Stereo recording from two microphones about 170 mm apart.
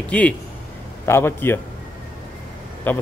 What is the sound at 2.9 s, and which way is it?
Speech, 10° left (ahead or behind).